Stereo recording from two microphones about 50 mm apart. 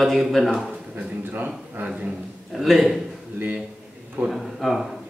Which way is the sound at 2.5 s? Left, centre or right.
Centre.